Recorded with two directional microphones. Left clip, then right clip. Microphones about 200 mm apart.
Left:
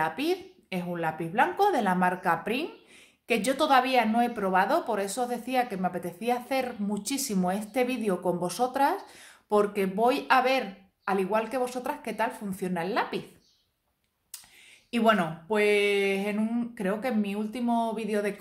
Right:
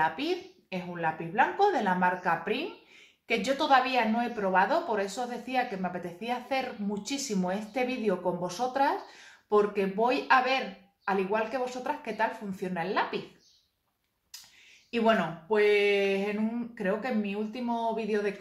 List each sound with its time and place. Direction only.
0.0 s a woman's voice: 40° left (ahead or behind)
14.9 s a woman's voice: 45° left (ahead or behind)